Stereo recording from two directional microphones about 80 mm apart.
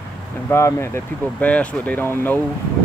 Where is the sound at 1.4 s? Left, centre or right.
Centre.